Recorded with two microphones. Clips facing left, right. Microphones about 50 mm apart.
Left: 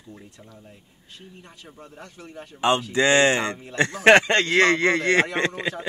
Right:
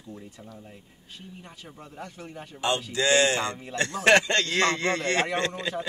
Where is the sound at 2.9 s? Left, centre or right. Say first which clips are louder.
Left 3 dB; left.